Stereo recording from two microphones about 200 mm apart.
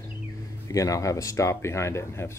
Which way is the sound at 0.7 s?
15° left (ahead or behind).